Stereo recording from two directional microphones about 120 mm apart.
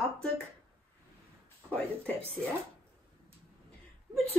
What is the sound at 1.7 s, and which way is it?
Speech, 10° left (ahead or behind).